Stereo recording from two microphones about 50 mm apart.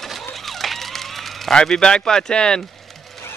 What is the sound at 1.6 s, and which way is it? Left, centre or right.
A man's voice, centre.